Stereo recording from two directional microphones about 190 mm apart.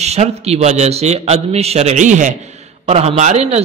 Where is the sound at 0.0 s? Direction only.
35° right (ahead or behind).